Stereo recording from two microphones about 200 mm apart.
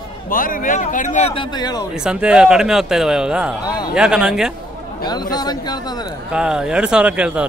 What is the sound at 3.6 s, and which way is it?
Speech, 20° left (ahead or behind).